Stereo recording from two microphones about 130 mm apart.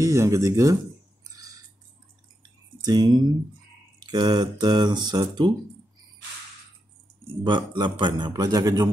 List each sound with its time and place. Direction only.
0.0 s speech: 25° right (ahead or behind)
1.2 s a sound: 30° right (ahead or behind)
2.8 s speech: 30° right (ahead or behind)
7.4 s speech: 40° right (ahead or behind)